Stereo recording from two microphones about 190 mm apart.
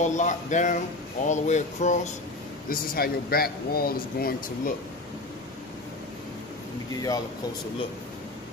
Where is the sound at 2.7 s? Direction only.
50° left (ahead or behind).